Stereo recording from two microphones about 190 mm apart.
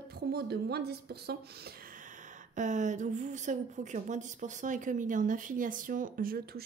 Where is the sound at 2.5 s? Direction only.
40° right (ahead or behind).